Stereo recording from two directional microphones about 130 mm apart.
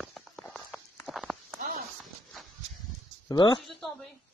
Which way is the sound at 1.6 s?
90° right.